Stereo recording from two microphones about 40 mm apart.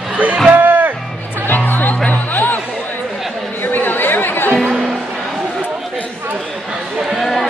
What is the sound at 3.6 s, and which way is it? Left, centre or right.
Chatter, left.